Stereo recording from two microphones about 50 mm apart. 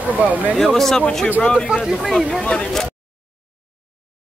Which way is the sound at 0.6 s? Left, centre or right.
Centre.